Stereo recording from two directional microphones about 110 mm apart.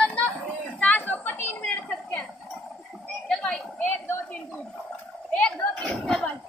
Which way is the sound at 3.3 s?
5° left (ahead or behind).